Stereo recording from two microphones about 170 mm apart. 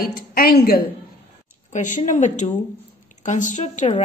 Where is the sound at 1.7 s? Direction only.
45° left (ahead or behind).